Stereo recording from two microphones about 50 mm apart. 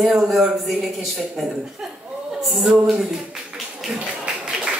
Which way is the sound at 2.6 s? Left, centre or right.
Centre.